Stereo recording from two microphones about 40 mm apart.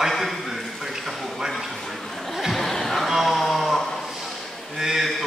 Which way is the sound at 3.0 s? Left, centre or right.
Centre.